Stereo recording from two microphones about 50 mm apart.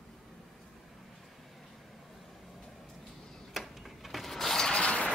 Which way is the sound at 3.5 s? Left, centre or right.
Centre.